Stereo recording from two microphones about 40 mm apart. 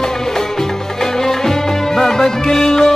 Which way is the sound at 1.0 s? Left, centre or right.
Centre.